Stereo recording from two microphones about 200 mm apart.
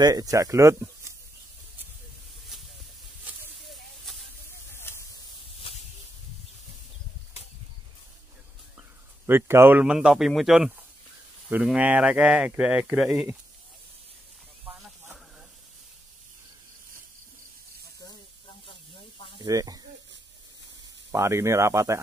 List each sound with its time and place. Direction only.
0.0 s speech: 20° right (ahead or behind)
3.3 s snake: centre (ahead or behind)
9.2 s speech: 10° right (ahead or behind)
18.7 s snake: 25° left (ahead or behind)
19.3 s speech: 20° right (ahead or behind)
21.1 s speech: 15° right (ahead or behind)